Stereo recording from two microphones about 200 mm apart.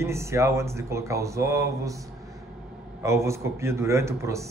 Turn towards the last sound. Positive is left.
turn(degrees=-15)  # may be behind; listen again after turning